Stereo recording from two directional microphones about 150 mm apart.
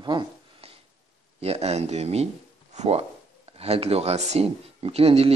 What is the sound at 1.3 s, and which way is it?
Speech, 45° right (ahead or behind).